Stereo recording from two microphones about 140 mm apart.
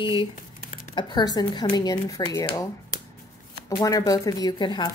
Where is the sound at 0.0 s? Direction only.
35° left (ahead or behind).